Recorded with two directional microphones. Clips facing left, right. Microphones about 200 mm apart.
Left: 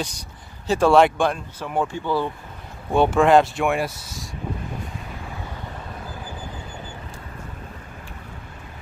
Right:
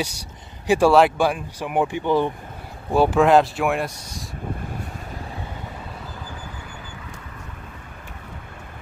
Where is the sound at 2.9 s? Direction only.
Centre (ahead or behind).